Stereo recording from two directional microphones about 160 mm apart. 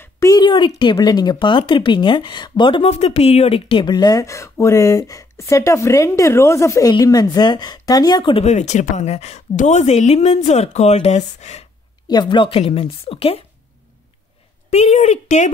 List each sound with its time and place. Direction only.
0.0 s speech: 20° left (ahead or behind)
8.5 s speech: 45° left (ahead or behind)
12.1 s speech: 30° left (ahead or behind)
14.7 s speech: 45° left (ahead or behind)